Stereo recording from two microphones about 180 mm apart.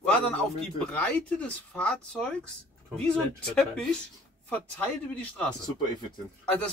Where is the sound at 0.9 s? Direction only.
5° left (ahead or behind).